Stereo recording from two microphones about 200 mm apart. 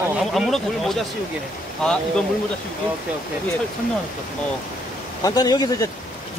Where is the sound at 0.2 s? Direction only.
Centre (ahead or behind).